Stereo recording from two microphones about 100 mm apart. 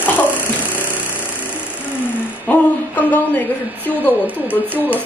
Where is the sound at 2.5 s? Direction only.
15° left (ahead or behind).